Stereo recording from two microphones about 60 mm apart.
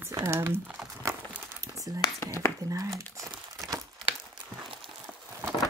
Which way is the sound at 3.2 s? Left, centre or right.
Right.